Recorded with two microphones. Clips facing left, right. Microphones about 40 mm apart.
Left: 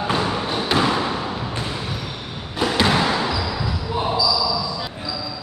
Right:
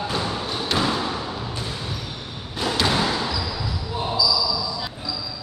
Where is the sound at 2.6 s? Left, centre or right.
Centre.